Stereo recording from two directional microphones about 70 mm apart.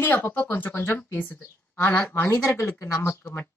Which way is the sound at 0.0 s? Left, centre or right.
Left.